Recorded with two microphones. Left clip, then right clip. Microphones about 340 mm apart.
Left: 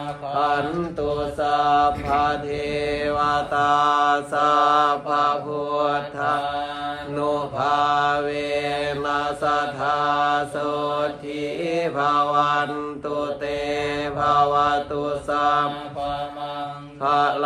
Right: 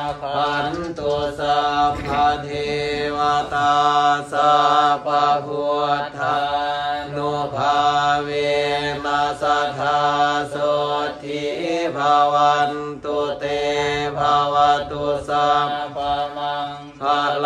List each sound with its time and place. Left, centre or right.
1.5 s mantra: centre
11.7 s mantra: centre
13.7 s mantra: centre
17.0 s mantra: centre